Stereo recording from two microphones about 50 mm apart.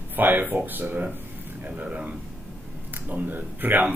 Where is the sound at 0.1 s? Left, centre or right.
Right.